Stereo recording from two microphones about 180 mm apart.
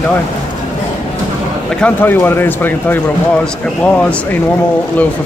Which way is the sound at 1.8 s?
10° left (ahead or behind).